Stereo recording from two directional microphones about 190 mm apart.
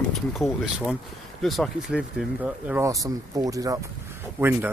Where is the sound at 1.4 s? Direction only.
Centre (ahead or behind); by 3.8 s 20° right (ahead or behind).